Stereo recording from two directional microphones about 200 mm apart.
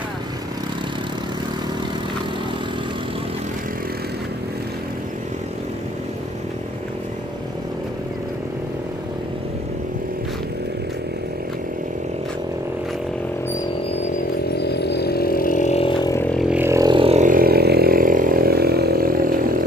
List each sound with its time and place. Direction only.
14.6 s vehicle: 55° left (ahead or behind); by 16.3 s 20° left (ahead or behind)
16.3 s vehicle: centre (ahead or behind); by 19.6 s 45° right (ahead or behind)